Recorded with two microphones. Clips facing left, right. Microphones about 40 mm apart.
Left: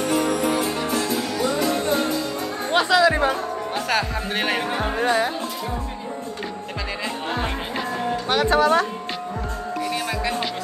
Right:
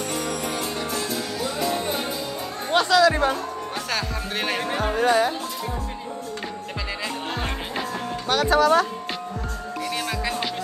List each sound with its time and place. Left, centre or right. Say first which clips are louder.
0.0 s music: left 6 dB; centre
2.7 s music: even; centre
4.7 s music: right 4 dB; left
8.3 s speech: even; left